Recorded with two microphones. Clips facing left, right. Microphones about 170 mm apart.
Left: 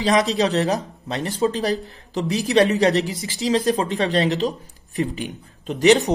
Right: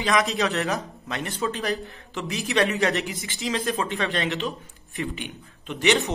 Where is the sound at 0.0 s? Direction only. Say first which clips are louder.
Left 5 dB; 35° left (ahead or behind).